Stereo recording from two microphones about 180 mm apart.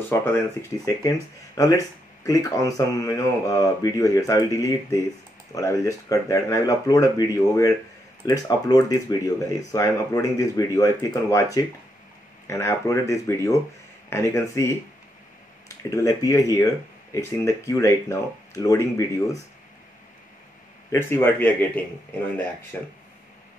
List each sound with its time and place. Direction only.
0.1 s speech: 15° left (ahead or behind)
8.3 s speech: 20° left (ahead or behind)
12.4 s speech: 15° left (ahead or behind)
15.9 s speech: 20° left (ahead or behind)
20.9 s speech: 10° left (ahead or behind)